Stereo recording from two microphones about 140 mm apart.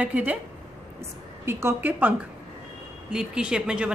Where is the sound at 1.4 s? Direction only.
20° right (ahead or behind).